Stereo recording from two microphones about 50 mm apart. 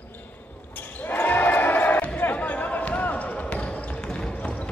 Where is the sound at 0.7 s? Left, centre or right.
Left.